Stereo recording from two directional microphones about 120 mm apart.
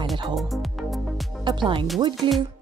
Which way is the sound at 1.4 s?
40° right (ahead or behind).